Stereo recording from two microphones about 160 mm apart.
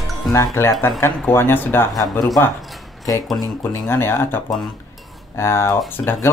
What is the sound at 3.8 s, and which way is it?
Speech, 15° left (ahead or behind).